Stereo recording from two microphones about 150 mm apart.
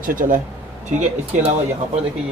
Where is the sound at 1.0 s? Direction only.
50° right (ahead or behind).